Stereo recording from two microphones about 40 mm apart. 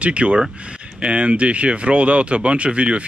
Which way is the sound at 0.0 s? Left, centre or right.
Right.